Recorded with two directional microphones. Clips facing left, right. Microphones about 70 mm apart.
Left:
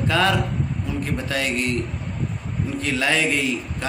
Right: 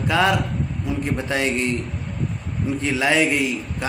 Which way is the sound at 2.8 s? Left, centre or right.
Centre.